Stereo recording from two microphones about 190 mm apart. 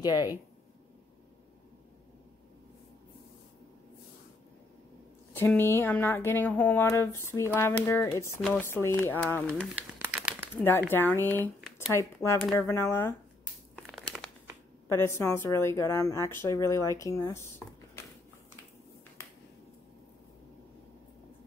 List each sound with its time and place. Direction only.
0.0 s speech: 20° left (ahead or behind)
5.3 s speech: 10° left (ahead or behind)
10.0 s crumpling: 10° right (ahead or behind)
10.6 s speech: 10° left (ahead or behind)
14.9 s speech: 15° left (ahead or behind)
19.2 s finger snapping: 15° left (ahead or behind)